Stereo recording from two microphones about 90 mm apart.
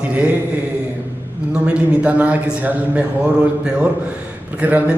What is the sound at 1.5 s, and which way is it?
A man's voice, 10° right (ahead or behind).